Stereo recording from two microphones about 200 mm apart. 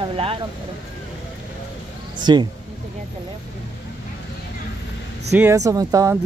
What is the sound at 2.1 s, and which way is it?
Speech, 20° right (ahead or behind).